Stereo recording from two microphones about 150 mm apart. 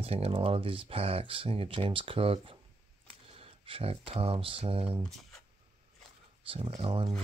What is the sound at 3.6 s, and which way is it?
Speech, 40° right (ahead or behind).